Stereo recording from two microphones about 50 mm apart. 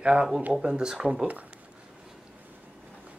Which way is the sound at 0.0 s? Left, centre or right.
Right.